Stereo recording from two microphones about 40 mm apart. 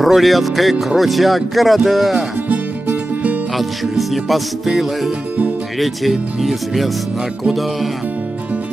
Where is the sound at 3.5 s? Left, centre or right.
Centre.